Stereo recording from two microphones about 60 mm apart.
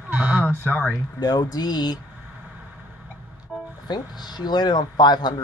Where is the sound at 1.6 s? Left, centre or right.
Left.